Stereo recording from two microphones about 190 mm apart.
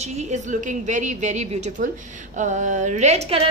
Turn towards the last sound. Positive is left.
turn(degrees=-35)  # may be behind; listen again after turning